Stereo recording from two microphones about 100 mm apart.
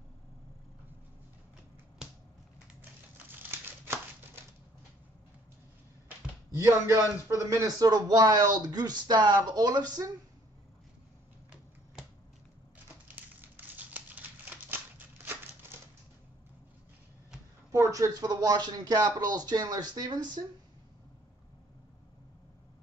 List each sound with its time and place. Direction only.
2.8 s crumpling: 20° right (ahead or behind)
6.5 s a man's voice: 30° right (ahead or behind)
13.1 s a sound: 15° right (ahead or behind)
17.6 s a man's voice: 30° right (ahead or behind)